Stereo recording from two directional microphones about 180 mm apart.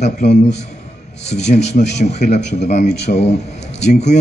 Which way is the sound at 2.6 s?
40° left (ahead or behind).